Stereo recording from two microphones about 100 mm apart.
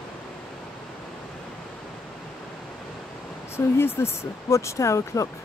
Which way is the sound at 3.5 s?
25° left (ahead or behind).